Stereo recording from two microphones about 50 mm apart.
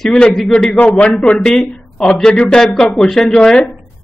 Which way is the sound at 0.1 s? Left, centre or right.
Centre.